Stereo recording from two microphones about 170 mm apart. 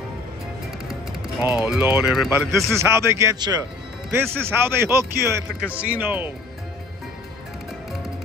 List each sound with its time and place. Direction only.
1.4 s speech: 20° left (ahead or behind)
1.7 s a man's voice: 10° right (ahead or behind)